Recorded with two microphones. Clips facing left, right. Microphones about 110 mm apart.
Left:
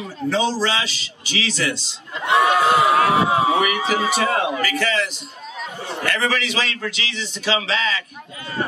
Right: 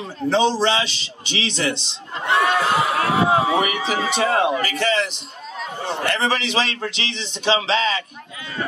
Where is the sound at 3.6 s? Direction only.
25° right (ahead or behind).